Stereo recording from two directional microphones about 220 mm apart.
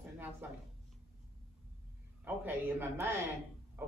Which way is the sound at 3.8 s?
10° right (ahead or behind).